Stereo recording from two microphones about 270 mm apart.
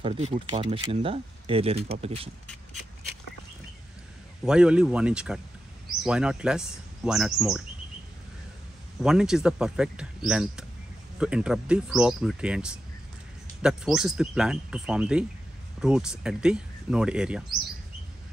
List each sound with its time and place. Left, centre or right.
0.0 s speech: centre
4.5 s speech: centre
9.0 s speech: centre